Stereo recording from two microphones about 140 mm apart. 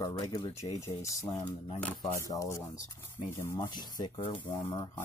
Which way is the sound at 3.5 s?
30° left (ahead or behind).